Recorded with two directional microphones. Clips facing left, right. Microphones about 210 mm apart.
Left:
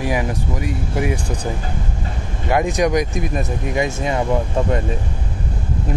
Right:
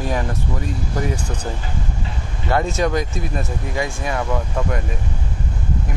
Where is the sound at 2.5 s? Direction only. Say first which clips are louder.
Left 2 dB; 15° left (ahead or behind).